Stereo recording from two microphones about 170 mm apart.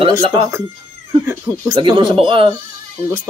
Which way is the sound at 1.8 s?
30° right (ahead or behind).